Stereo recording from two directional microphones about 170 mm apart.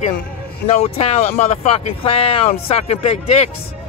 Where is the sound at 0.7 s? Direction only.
40° left (ahead or behind).